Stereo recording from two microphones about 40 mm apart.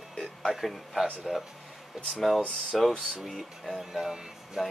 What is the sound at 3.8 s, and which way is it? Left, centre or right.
Music, centre.